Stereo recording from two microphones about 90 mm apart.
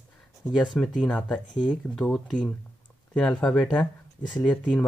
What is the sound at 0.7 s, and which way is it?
Speech, 10° left (ahead or behind).